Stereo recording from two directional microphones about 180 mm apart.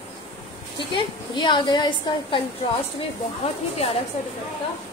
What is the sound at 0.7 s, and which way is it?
A woman's voice, 25° left (ahead or behind).